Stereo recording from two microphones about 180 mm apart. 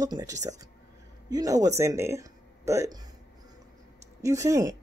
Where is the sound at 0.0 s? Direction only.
20° right (ahead or behind).